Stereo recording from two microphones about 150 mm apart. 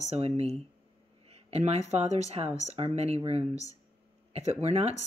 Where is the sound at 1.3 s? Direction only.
45° right (ahead or behind).